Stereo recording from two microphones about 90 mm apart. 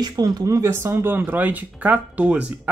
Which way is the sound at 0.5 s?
35° right (ahead or behind).